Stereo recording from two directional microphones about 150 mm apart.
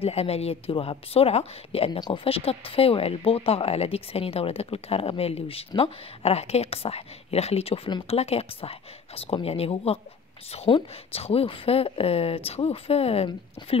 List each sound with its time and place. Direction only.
0.0 s speech: 40° left (ahead or behind)
1.9 s speech: 30° left (ahead or behind)